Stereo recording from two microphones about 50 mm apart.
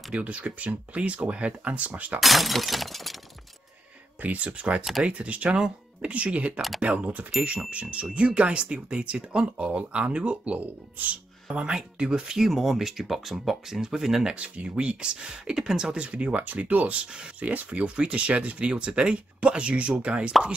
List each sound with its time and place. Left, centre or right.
0.1 s speech: right
2.1 s shatter: centre
4.2 s speech: right
11.5 s speech: centre
14.3 s speech: right
16.0 s speech: right